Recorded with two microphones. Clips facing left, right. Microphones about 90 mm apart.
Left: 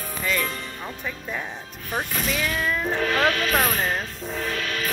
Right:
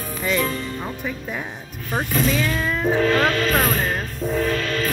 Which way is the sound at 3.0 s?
35° right (ahead or behind).